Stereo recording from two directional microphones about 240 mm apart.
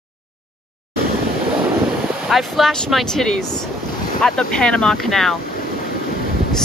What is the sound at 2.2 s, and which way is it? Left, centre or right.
Speech, centre.